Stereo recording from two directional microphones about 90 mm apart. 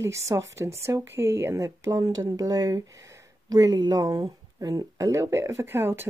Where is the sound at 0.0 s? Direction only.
35° right (ahead or behind).